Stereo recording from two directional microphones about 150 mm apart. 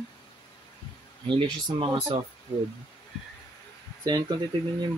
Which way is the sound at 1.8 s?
35° right (ahead or behind).